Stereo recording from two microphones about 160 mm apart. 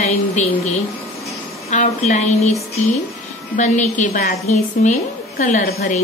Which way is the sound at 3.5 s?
50° left (ahead or behind).